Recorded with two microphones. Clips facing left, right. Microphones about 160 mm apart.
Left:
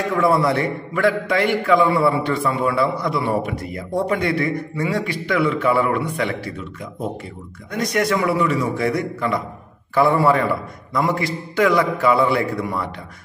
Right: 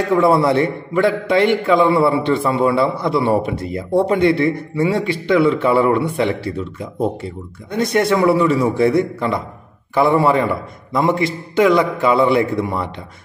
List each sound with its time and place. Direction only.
0.1 s a man's voice: 25° right (ahead or behind)